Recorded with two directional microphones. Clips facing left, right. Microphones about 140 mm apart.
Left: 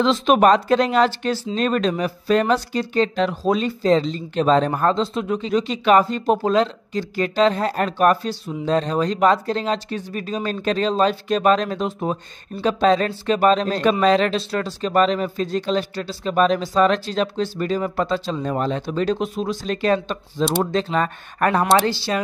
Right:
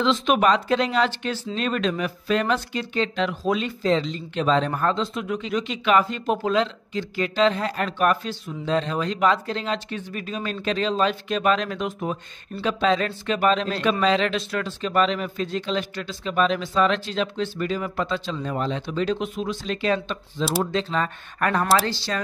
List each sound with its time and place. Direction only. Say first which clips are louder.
0.0 s speech: left 4 dB; 40° left (ahead or behind)
14.3 s speech: left 3 dB; 35° left (ahead or behind)